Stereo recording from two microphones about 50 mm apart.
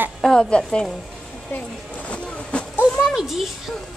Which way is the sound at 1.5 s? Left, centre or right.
Left.